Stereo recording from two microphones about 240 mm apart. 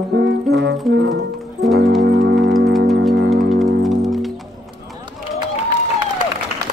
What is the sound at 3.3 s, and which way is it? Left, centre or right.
Music, centre.